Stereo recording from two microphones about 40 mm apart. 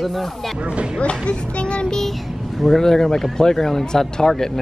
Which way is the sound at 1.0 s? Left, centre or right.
Left.